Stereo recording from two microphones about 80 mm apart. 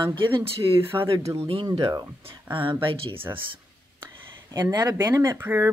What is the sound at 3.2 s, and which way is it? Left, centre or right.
Speech, right.